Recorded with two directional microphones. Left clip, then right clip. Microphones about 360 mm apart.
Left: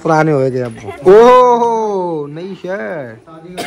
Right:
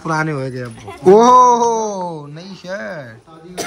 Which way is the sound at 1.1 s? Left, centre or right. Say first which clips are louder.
Left 3 dB; centre.